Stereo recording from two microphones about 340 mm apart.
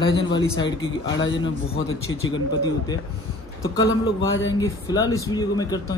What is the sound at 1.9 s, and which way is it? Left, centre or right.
Speech, left.